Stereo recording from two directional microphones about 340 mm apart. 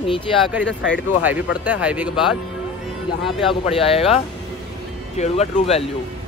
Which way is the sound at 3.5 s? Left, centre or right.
Centre.